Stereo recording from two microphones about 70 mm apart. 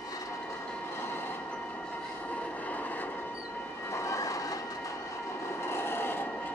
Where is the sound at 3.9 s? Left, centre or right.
Left.